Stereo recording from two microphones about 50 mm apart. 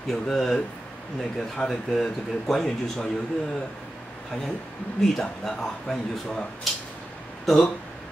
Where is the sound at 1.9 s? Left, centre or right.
Centre.